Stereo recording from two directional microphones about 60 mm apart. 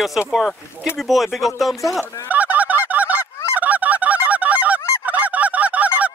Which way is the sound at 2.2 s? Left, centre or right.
Right.